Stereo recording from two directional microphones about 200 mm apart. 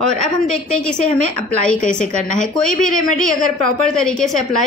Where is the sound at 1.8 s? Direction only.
40° left (ahead or behind).